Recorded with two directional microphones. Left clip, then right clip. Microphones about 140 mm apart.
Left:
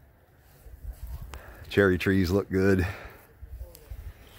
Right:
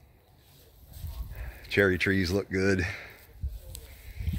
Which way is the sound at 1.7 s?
45° left (ahead or behind).